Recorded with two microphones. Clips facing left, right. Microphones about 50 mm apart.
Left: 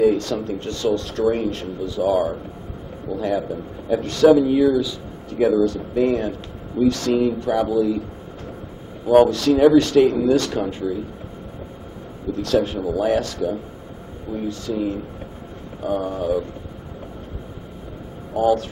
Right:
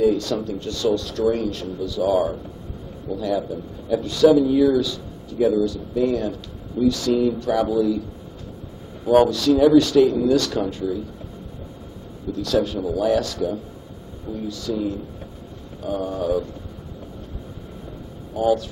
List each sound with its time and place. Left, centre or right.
0.0 s a man's voice: left
2.0 s a sound: centre
3.2 s a man's voice: left
4.3 s speech: left
4.6 s a sound: centre
5.5 s a man's voice: left
7.2 s speech: left
7.5 s a man's voice: centre
9.0 s speech: centre
9.3 s a man's voice: left
12.3 s a man's voice: left
16.0 s a sound: centre
18.3 s speech: left